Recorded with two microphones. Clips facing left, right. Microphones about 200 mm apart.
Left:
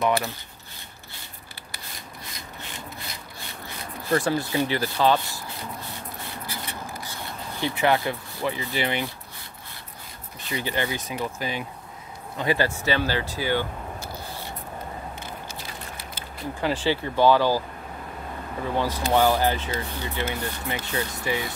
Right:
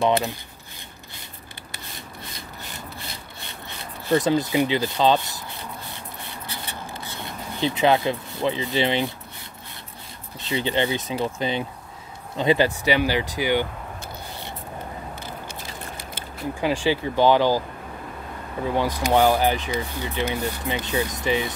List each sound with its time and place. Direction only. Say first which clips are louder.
0.0 s speech: right 3 dB; 20° right (ahead or behind)
3.3 s speech: even; 25° right (ahead or behind)
6.4 s a sound: right 1 dB; 25° right (ahead or behind)
10.4 s speech: right 5 dB; 25° right (ahead or behind)
16.6 s speech: right 2 dB; 15° right (ahead or behind)
18.8 s speech: right 2 dB; 15° right (ahead or behind)